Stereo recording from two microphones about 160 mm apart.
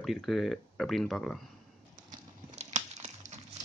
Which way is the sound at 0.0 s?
Centre (ahead or behind).